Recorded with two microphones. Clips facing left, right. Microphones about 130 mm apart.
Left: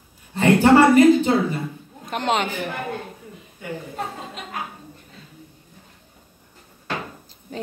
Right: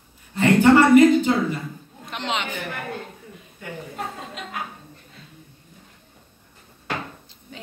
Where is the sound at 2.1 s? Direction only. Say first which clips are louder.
Left 6 dB; 45° left (ahead or behind).